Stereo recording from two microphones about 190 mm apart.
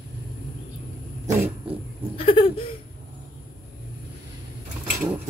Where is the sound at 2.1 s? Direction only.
30° left (ahead or behind).